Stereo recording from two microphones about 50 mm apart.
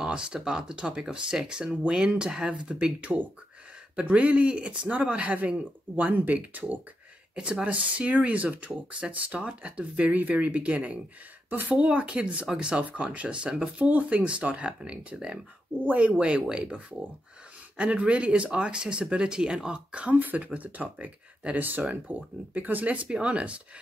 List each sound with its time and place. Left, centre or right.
0.0 s speech: centre; by 6.8 s right
7.3 s speech: centre
7.6 s speech: right
11.9 s speech: right
13.7 s speech: right
15.8 s speech: right